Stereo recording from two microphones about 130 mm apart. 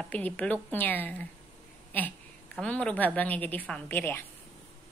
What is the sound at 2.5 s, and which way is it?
A woman's voice, 10° left (ahead or behind).